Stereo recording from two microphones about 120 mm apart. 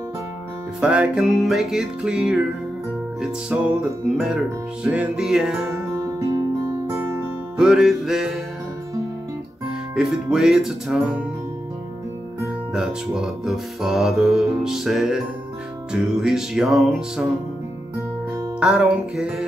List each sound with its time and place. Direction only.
0.7 s music: 10° right (ahead or behind)
6.1 s music: 30° right (ahead or behind)
7.5 s music: 5° right (ahead or behind)
9.9 s music: 5° right (ahead or behind)
12.7 s music: 5° right (ahead or behind)
18.6 s music: 5° right (ahead or behind)